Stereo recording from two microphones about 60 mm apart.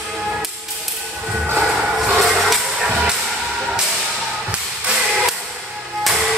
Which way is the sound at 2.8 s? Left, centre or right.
Centre.